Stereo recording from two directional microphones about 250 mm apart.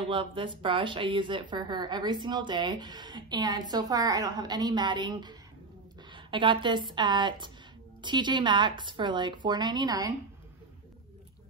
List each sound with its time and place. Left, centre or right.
0.1 s a woman's voice: right